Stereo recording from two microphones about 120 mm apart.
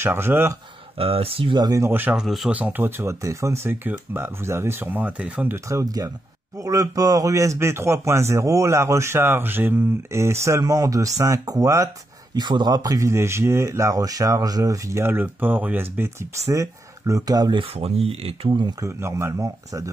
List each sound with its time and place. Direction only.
0.0 s speech: 20° right (ahead or behind)
0.9 s speech: 55° right (ahead or behind)
1.8 s speech: 15° right (ahead or behind)
2.1 s speech: centre (ahead or behind)
2.5 s speech: 15° right (ahead or behind)
5.7 s speech: 30° right (ahead or behind)
12.4 s speech: 40° right (ahead or behind)
17.6 s speech: 55° right (ahead or behind)
18.8 s speech: 20° right (ahead or behind)